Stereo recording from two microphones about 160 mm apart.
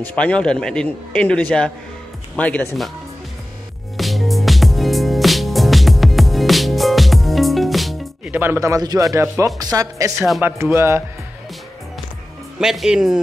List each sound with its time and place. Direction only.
0.0 s a man's voice: 5° left (ahead or behind)
3.9 s music: centre (ahead or behind)
8.4 s speech: 15° right (ahead or behind)
12.5 s speech: 5° right (ahead or behind)